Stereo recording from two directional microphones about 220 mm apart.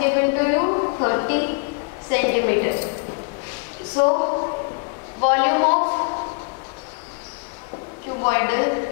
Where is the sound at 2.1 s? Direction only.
15° left (ahead or behind).